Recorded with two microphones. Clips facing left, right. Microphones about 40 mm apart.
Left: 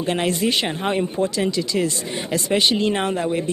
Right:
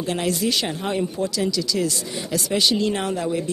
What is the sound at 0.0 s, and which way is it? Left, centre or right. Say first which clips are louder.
Speech: left 2 dB; left.